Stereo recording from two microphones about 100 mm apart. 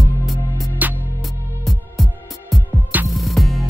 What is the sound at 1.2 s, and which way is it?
Music, centre (ahead or behind).